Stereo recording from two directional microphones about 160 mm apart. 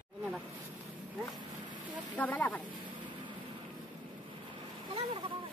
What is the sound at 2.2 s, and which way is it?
Vehicle, 10° left (ahead or behind).